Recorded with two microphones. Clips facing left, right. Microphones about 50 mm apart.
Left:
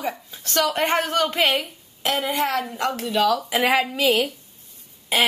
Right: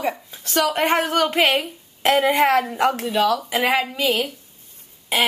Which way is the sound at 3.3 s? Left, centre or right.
Centre.